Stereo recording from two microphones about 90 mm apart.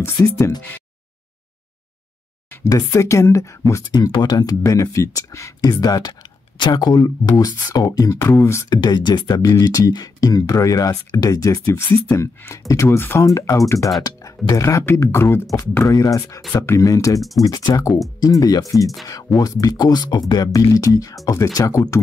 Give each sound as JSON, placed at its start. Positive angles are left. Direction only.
{"t": 0.0, "sound": "speech", "side_deg": 30}
{"t": 2.6, "sound": "speech", "side_deg": 35}
{"t": 3.9, "sound": "speech", "side_deg": 50}
{"t": 4.6, "sound": "speech", "side_deg": 35}
{"t": 8.2, "sound": "beatboxing", "side_deg": 30}
{"t": 8.6, "sound": "speech", "side_deg": 50}
{"t": 9.4, "sound": "speech", "side_deg": 40}
{"t": 13.3, "sound": "speech", "side_deg": 35}